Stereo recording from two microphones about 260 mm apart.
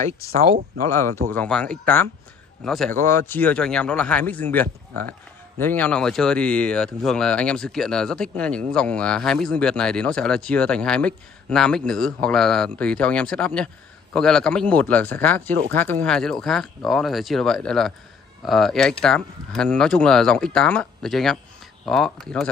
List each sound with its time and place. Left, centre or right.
1.3 s speech: centre